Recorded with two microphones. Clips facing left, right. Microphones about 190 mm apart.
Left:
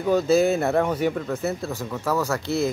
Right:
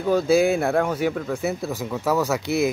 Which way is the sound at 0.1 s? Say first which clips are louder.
Right 1 dB; 10° right (ahead or behind).